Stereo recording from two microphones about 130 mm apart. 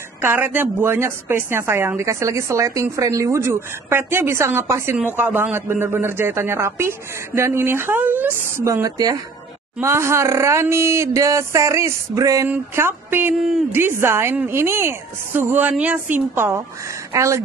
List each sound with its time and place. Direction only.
0.2 s a woman's voice: 15° right (ahead or behind)